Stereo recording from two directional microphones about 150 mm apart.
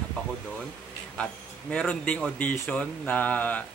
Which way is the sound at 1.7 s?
5° left (ahead or behind).